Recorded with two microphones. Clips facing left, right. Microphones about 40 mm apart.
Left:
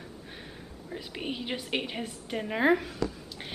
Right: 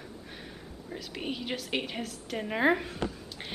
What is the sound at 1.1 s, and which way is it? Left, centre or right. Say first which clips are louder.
A woman's voice: even; centre.